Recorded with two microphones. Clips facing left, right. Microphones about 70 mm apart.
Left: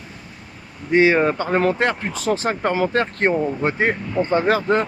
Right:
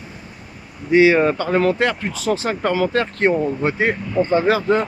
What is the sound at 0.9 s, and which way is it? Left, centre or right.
Speech, left.